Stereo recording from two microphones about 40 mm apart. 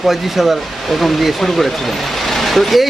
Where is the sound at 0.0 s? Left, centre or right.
Centre.